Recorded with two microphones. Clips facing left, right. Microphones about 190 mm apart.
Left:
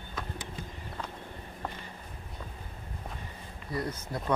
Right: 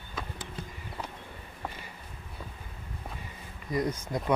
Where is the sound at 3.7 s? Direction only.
15° right (ahead or behind).